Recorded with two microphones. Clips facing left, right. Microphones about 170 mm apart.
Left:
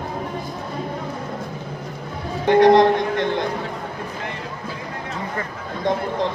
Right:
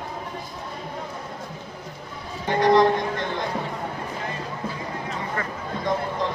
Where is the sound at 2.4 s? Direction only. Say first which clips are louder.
Left 5 dB; 65° left (ahead or behind).